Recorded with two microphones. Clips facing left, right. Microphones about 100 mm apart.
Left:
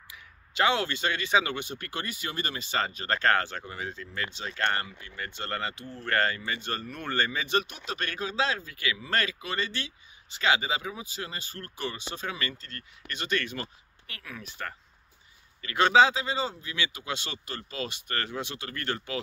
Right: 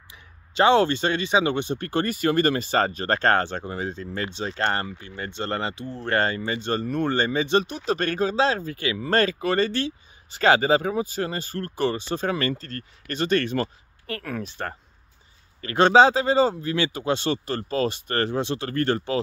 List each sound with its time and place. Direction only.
0.1 s speech: 30° right (ahead or behind)
2.0 s speech: 55° right (ahead or behind)
14.4 s speech: 35° right (ahead or behind)